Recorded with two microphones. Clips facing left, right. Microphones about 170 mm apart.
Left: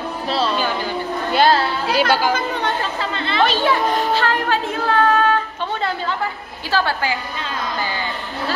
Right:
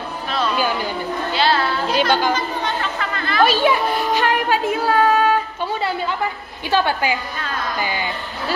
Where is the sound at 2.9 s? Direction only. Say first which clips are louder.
Left 1 dB; 25° left (ahead or behind).